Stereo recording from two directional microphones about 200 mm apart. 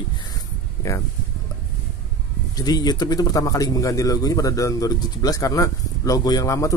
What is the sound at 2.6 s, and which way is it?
Speech, 20° left (ahead or behind).